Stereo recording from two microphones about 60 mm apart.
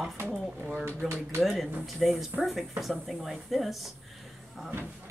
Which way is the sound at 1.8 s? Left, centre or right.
Centre.